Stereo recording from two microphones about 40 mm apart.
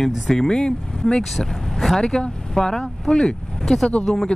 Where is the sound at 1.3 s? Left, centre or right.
Centre.